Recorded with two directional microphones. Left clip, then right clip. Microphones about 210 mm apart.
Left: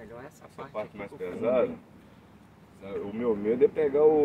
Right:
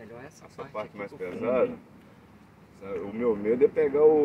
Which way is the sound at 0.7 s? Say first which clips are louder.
Even; 20° left (ahead or behind).